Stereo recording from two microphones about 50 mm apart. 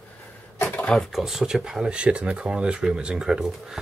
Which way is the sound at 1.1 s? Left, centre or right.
Centre.